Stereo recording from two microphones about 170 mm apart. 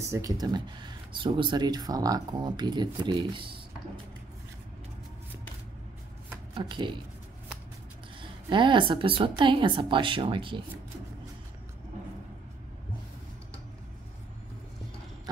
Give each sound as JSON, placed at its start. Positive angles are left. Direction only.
{"t": 0.1, "sound": "speech", "side_deg": -20}
{"t": 6.5, "sound": "speech", "side_deg": -30}
{"t": 8.2, "sound": "speech", "side_deg": -30}